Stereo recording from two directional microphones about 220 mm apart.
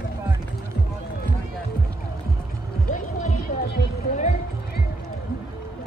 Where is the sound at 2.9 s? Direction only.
35° left (ahead or behind).